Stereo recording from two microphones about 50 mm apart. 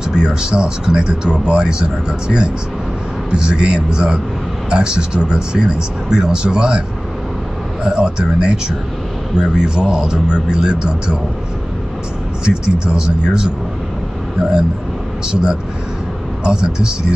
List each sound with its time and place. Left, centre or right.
0.1 s speech: centre
7.8 s speech: centre
12.4 s speech: centre